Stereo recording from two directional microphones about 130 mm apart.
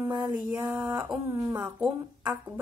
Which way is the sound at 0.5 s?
20° right (ahead or behind).